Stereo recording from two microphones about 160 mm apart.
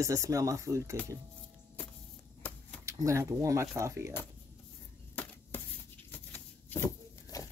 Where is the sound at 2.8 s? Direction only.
20° right (ahead or behind).